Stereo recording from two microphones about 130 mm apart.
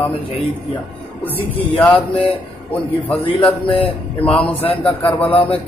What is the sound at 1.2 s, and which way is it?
A man's voice, 10° left (ahead or behind).